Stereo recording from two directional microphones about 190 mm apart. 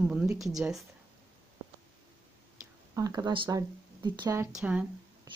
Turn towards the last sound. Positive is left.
turn(degrees=-5)  # may be behind; listen again after turning